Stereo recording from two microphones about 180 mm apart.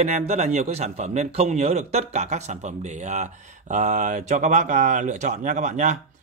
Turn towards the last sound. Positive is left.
turn(degrees=-40)  # may be behind; listen again after turning